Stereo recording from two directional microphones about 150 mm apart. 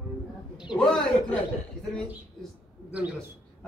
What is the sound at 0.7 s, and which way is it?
Speech, 5° left (ahead or behind).